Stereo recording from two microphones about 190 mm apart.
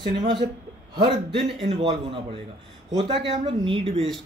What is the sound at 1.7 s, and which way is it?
A man's voice, 30° right (ahead or behind).